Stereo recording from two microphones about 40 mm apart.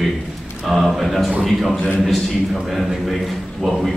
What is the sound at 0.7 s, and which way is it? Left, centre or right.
A man's voice, centre.